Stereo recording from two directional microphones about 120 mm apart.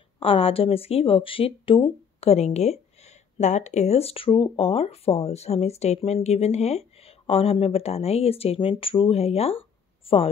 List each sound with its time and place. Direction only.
0.2 s speech: 50° left (ahead or behind)